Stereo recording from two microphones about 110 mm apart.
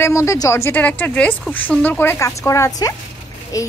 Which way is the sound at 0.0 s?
30° left (ahead or behind).